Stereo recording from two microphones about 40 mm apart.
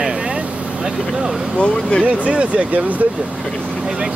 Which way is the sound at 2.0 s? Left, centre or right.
Right.